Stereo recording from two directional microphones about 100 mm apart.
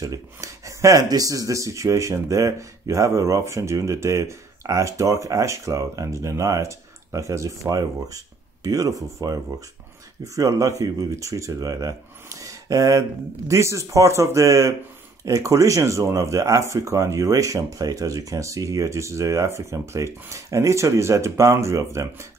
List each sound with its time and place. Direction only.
0.0 s speech: 35° right (ahead or behind)